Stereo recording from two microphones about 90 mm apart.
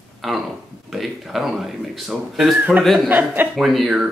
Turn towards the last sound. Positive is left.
turn(degrees=-5)  # may be behind; listen again after turning